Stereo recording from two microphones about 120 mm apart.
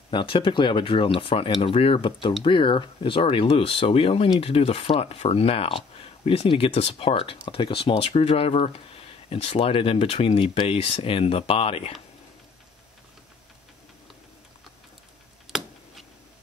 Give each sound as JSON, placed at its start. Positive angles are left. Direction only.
{"t": 0.1, "sound": "speech", "side_deg": 45}